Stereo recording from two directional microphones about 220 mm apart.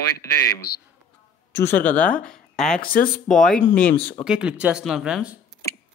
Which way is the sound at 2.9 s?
40° left (ahead or behind).